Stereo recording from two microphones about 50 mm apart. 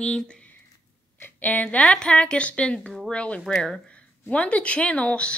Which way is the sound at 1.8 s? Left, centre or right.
Centre.